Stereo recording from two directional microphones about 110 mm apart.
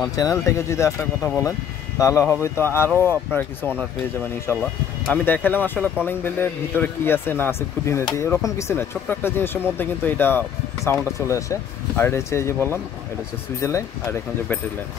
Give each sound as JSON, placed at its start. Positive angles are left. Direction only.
{"t": 0.1, "sound": "speech", "side_deg": 30}